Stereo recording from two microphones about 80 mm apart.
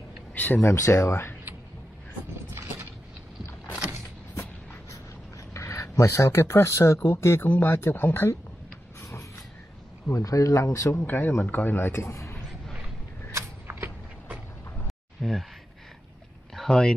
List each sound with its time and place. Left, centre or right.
0.3 s speech: left
2.5 s vehicle: right
5.5 s speech: left
10.1 s speech: left
11.1 s speech: left
13.3 s vehicle: right
15.2 s a sound: centre
16.5 s speech: centre